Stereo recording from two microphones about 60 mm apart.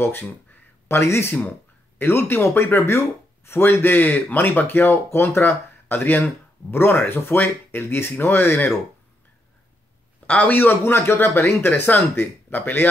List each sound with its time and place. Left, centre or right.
0.0 s a sound: left
1.0 s speech: left
10.2 s speech: left